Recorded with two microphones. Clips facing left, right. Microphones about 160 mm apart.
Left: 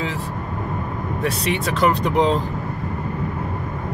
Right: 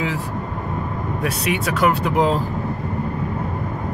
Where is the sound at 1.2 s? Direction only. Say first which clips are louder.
Even; 10° right (ahead or behind).